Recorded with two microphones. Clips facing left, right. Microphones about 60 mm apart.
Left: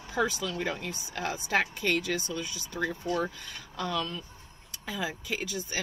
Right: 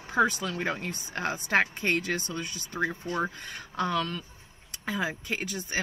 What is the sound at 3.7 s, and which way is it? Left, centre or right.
Speech, right.